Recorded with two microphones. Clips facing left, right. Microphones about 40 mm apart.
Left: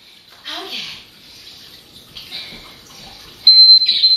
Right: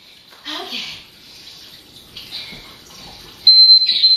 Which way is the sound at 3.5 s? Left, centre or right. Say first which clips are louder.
Left 1 dB; centre.